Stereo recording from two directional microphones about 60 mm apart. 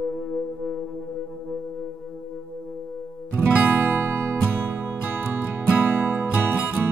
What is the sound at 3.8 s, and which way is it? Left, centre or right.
Music, right.